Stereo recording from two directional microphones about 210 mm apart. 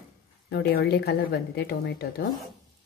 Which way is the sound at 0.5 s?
50° left (ahead or behind).